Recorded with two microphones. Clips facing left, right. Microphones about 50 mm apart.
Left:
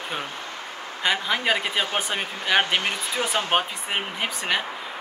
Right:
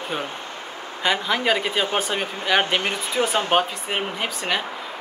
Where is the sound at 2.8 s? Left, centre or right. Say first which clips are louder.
Right 3 dB; right.